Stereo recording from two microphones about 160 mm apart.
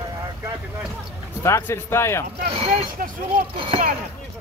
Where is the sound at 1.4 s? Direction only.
15° left (ahead or behind).